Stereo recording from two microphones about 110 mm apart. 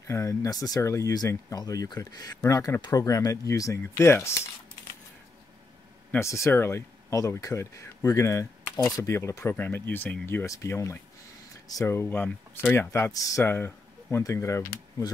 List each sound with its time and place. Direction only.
0.0 s speech: 25° left (ahead or behind)
6.1 s speech: 25° left (ahead or behind)
11.9 s speech: 20° left (ahead or behind)